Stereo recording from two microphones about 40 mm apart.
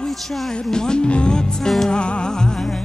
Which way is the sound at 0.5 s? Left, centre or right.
Centre.